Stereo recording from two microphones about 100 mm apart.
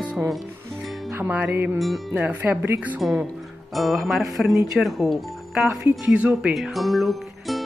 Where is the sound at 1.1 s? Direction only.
20° right (ahead or behind).